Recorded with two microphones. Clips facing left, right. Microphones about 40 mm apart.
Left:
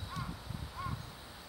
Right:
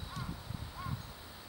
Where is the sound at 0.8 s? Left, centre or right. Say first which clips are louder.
Left 3 dB; centre.